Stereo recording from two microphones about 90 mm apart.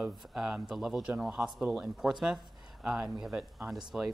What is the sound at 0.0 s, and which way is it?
Speech, 5° right (ahead or behind).